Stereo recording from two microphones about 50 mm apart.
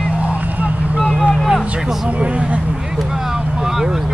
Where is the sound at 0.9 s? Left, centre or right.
Right.